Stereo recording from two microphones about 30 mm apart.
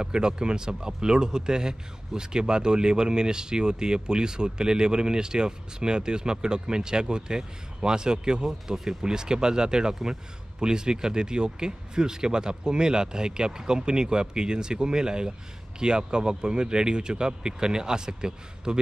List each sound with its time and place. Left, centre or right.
0.0 s a man's voice: right